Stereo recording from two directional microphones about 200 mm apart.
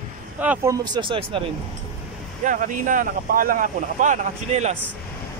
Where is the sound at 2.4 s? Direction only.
40° right (ahead or behind).